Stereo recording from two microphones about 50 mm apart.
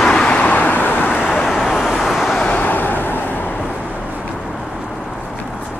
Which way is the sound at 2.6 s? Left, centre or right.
Left.